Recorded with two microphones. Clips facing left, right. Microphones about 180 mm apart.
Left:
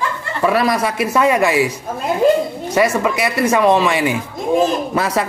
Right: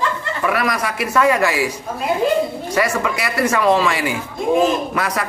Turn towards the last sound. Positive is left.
turn(degrees=25)  # may be behind; listen again after turning